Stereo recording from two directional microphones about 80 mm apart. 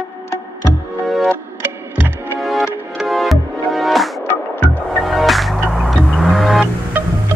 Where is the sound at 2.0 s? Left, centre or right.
Right.